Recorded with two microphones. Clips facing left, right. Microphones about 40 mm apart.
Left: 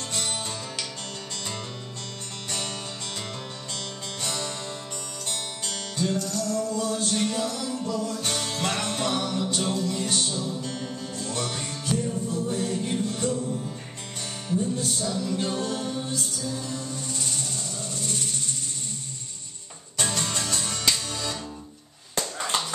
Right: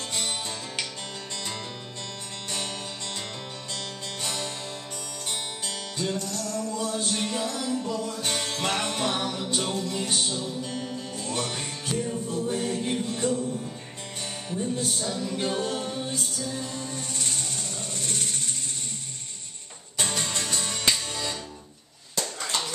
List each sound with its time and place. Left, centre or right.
0.1 s music: centre
4.2 s music: centre
14.5 s music: right
20.1 s music: centre